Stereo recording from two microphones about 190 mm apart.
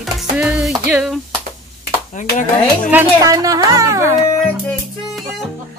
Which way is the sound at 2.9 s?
20° right (ahead or behind).